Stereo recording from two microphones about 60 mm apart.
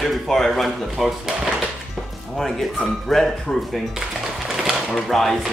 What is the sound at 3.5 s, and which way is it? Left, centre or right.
Speech, left.